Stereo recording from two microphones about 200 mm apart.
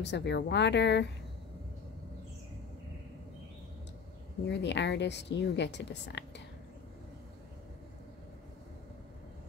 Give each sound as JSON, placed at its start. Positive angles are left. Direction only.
{"t": 0.0, "sound": "speech", "side_deg": 60}
{"t": 4.5, "sound": "speech", "side_deg": 60}